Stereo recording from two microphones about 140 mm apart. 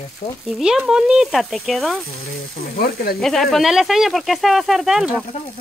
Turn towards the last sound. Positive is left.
turn(degrees=-5)  # may be behind; listen again after turning